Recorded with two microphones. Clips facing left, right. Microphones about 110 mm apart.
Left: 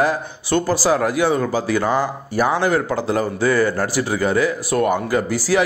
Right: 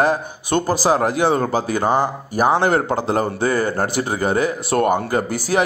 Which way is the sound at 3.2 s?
45° right (ahead or behind).